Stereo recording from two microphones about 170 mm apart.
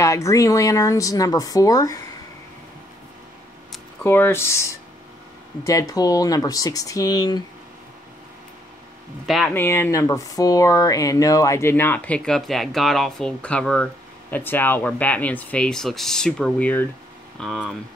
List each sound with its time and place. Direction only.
0.0 s speech: 20° left (ahead or behind)
4.0 s speech: 15° left (ahead or behind)
9.2 s speech: centre (ahead or behind)
9.5 s speech: 10° left (ahead or behind)